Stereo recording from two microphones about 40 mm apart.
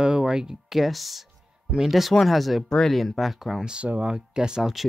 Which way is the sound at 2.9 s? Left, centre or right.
Centre.